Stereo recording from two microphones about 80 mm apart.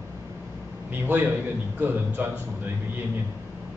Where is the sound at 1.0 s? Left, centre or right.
Right.